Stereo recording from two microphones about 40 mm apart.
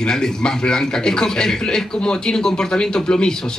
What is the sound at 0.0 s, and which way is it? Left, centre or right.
Speech, centre.